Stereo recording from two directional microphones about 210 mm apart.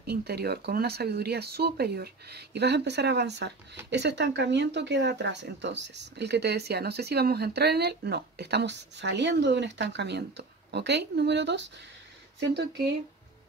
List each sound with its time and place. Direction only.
0.0 s speech: 50° right (ahead or behind)